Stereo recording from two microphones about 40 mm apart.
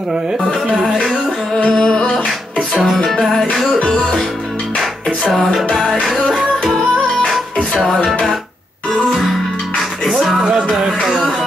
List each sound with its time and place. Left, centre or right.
0.7 s music: centre
1.7 s music: centre
3.5 s music: centre
5.3 s music: centre
10.4 s music: centre